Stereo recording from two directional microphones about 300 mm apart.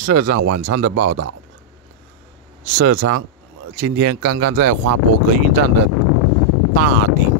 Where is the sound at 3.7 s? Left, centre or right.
Right.